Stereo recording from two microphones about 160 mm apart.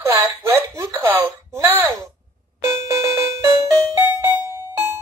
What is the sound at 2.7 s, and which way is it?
Music, 20° right (ahead or behind).